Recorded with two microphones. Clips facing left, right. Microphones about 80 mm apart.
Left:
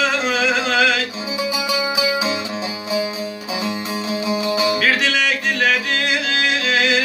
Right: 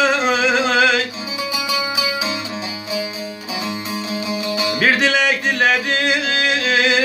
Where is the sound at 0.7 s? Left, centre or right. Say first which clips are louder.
Right 1 dB; centre.